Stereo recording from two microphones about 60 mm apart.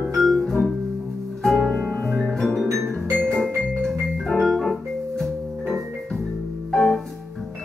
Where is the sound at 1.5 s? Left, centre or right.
Centre.